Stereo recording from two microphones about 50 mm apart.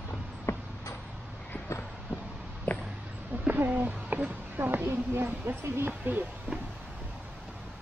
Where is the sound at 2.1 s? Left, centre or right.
Right.